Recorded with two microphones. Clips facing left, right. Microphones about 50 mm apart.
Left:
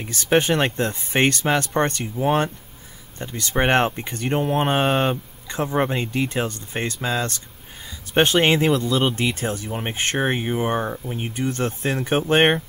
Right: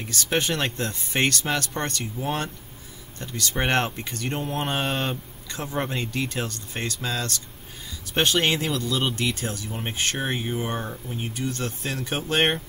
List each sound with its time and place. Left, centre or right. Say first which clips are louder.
0.0 s speech: left 6 dB; left